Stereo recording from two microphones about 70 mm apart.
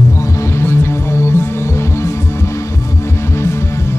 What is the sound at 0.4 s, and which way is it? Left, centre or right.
Music, left.